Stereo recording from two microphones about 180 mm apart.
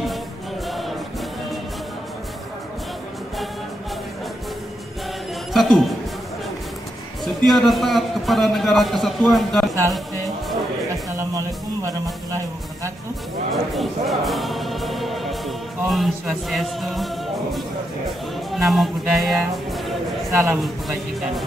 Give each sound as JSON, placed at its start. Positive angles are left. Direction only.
{"t": 0.7, "sound": "music", "side_deg": 0}
{"t": 5.5, "sound": "music", "side_deg": 0}
{"t": 7.4, "sound": "a man's voice", "side_deg": 0}
{"t": 11.1, "sound": "speech", "side_deg": -15}
{"t": 13.5, "sound": "speech", "side_deg": 0}
{"t": 20.2, "sound": "a man's voice", "side_deg": -15}